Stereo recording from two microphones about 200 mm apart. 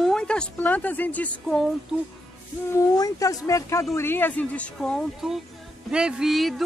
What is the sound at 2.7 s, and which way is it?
A woman's voice, 15° left (ahead or behind).